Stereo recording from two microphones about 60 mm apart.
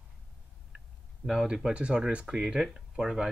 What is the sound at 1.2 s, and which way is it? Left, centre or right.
Speech, centre.